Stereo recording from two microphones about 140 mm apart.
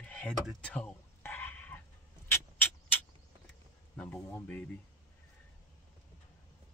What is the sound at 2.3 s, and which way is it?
Rodents, 15° left (ahead or behind).